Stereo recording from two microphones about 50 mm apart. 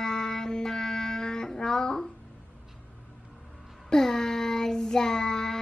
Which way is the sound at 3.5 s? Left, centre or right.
Centre.